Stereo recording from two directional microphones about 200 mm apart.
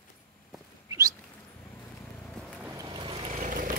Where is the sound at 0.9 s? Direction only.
15° right (ahead or behind).